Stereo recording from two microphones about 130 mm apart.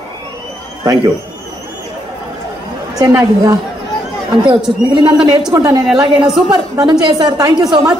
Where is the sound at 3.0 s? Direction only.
25° right (ahead or behind).